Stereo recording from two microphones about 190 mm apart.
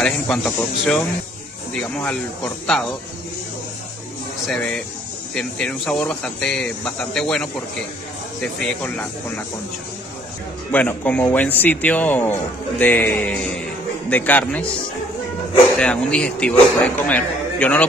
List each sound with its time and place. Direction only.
0.0 s speech: 5° left (ahead or behind)
4.5 s speech: 5° left (ahead or behind)
10.7 s speech: 10° left (ahead or behind)
15.8 s speech: 5° left (ahead or behind)